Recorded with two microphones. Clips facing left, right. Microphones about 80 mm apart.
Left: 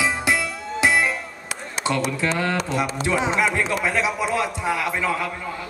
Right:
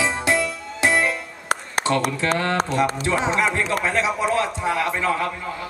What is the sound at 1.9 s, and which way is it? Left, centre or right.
Speech, centre.